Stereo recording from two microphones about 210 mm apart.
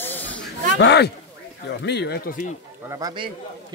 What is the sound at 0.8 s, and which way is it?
Speech, 55° left (ahead or behind).